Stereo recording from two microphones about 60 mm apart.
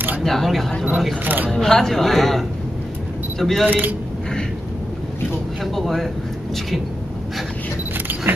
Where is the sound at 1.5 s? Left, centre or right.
Centre.